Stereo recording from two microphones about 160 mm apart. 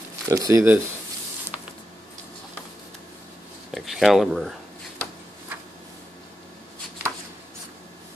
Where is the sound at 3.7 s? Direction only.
Centre (ahead or behind).